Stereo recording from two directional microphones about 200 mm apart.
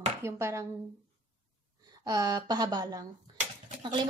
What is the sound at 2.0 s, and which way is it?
A woman's voice, 15° right (ahead or behind).